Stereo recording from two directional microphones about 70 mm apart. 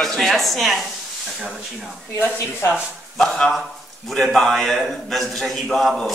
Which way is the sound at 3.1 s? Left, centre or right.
Centre.